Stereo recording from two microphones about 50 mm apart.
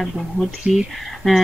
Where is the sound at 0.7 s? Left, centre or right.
Centre.